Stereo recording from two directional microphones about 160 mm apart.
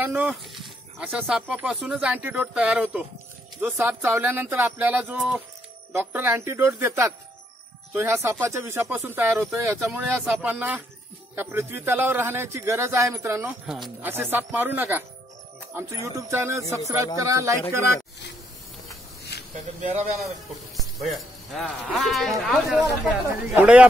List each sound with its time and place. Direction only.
0.0 s speech: 10° right (ahead or behind)
13.7 s speech: centre (ahead or behind)
14.0 s speech: 15° right (ahead or behind)
19.5 s speech: 45° right (ahead or behind)
20.7 s speech: centre (ahead or behind)